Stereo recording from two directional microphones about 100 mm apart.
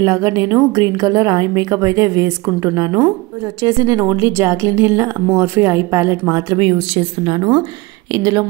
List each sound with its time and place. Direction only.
0.0 s a woman's voice: 35° right (ahead or behind)
6.6 s speech: 70° right (ahead or behind)
7.2 s speech: 50° right (ahead or behind)
8.1 s a woman's voice: 35° right (ahead or behind)